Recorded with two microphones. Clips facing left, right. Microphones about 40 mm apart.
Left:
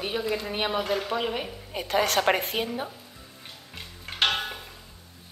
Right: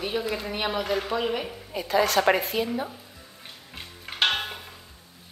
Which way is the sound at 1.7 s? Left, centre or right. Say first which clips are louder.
Right 2 dB; left.